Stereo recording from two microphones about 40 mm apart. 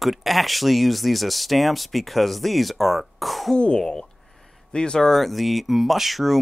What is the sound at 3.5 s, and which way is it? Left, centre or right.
Cough, centre.